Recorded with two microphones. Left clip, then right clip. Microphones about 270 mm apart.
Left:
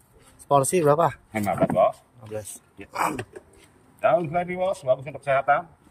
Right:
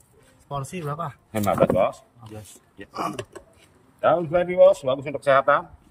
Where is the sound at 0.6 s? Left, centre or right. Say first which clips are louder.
Left 12 dB; centre.